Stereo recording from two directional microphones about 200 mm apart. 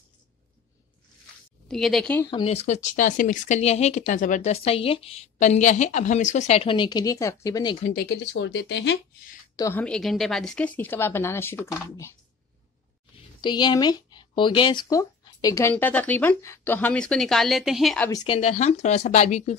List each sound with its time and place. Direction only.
1.7 s a woman's voice: centre (ahead or behind)
2.3 s speech: 30° left (ahead or behind)
7.8 s speech: 50° left (ahead or behind)
9.6 s speech: 10° left (ahead or behind)
13.4 s speech: 20° left (ahead or behind); by 18.1 s 5° left (ahead or behind)
18.1 s speech: 25° left (ahead or behind)